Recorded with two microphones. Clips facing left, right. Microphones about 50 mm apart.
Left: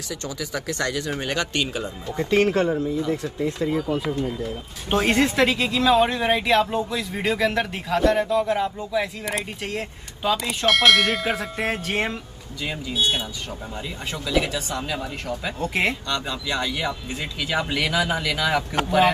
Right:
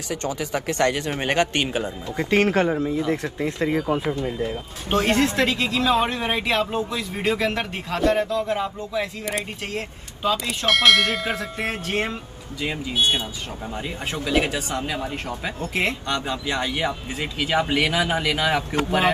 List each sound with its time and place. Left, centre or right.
0.1 s speech: right
4.9 s speech: centre
5.8 s speech: centre
14.1 s speech: right
15.7 s speech: centre
16.1 s speech: right